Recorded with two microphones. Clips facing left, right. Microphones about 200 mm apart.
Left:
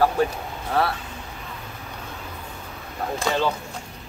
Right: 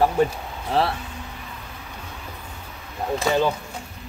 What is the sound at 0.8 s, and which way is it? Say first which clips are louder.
Speech: right 1 dB; 25° right (ahead or behind).